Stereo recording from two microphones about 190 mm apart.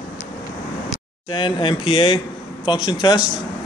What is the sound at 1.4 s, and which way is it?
Speech, 25° left (ahead or behind).